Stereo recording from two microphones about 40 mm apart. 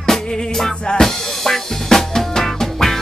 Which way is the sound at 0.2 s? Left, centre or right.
Centre.